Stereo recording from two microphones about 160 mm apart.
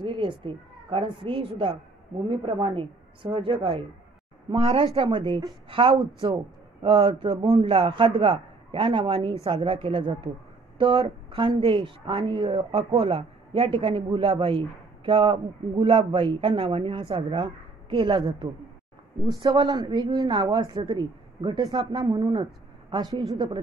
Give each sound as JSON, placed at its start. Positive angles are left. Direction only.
{"t": 0.0, "sound": "a woman's voice", "side_deg": -30}